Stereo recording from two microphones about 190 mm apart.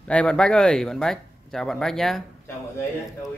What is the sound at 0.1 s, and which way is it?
Speech, 5° left (ahead or behind).